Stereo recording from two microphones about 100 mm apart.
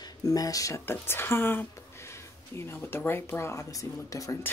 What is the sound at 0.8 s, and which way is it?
Speech, 20° left (ahead or behind).